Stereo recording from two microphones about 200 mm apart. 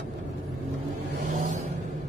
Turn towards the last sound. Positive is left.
turn(degrees=-40)  # may be behind; listen again after turning